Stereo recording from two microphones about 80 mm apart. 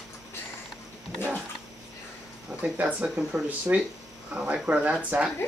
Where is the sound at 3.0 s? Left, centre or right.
Centre.